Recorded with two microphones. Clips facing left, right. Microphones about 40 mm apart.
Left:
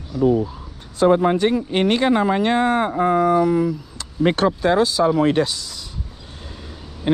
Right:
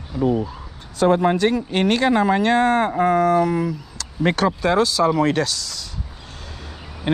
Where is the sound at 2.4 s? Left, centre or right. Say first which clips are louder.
Right 1 dB; centre.